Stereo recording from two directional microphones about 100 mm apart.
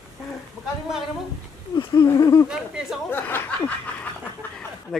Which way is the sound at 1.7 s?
45° left (ahead or behind).